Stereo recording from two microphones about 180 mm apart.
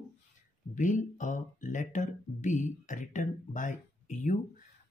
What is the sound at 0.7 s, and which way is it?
Speech, 45° left (ahead or behind).